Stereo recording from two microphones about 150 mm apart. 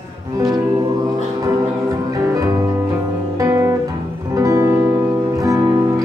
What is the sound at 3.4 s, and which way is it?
Guitar, 20° right (ahead or behind).